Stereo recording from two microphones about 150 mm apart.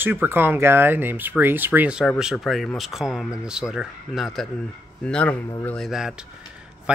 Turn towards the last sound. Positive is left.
turn(degrees=-5)  # may be behind; listen again after turning